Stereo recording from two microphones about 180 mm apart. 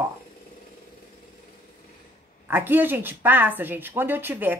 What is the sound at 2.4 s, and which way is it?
A woman's voice, 10° right (ahead or behind).